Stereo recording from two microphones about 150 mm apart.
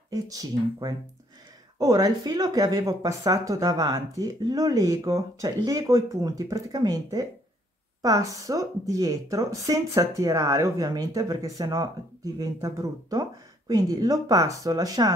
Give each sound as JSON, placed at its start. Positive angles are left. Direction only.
{"t": 0.1, "sound": "speech", "side_deg": -25}